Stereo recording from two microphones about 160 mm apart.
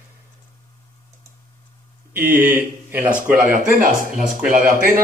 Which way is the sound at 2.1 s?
15° right (ahead or behind).